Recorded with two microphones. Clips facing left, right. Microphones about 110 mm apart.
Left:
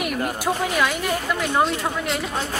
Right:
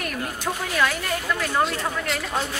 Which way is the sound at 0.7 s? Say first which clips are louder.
Left 2 dB; 10° left (ahead or behind).